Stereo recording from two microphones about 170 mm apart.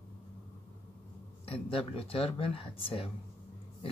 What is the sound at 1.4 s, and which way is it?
Speech, 35° left (ahead or behind).